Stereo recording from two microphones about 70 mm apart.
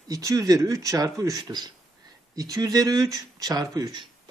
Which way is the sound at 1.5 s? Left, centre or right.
Right.